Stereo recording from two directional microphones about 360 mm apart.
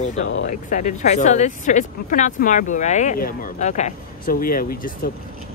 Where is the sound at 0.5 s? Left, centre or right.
Left.